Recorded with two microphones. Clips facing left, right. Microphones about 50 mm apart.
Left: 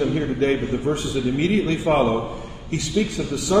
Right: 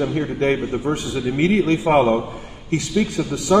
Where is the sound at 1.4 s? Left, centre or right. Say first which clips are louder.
Right 6 dB; right.